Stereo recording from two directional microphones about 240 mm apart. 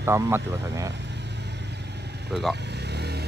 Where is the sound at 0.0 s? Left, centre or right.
Centre.